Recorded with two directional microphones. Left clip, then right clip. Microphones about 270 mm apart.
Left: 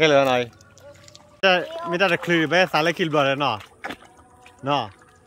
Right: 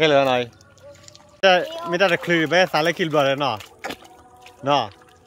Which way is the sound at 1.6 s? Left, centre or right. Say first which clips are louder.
Right 2 dB; right.